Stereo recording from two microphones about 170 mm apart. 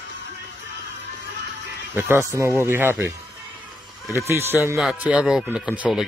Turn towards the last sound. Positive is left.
turn(degrees=-5)  # may be behind; listen again after turning